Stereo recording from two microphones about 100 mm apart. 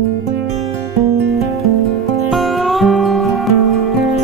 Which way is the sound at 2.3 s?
Centre (ahead or behind).